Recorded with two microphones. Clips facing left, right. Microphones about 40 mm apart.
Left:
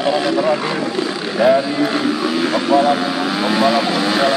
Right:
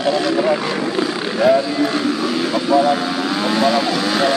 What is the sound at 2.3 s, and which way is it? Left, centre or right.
Vehicle, centre.